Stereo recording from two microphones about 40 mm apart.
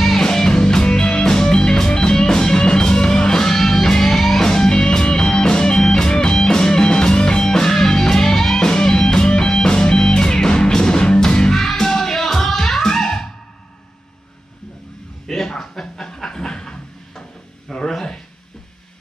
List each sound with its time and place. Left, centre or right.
0.0 s music: centre
11.5 s music: centre
15.2 s pant: centre
16.2 s a sound: centre